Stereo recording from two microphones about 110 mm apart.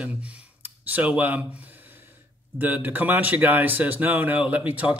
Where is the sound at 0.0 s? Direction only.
10° right (ahead or behind).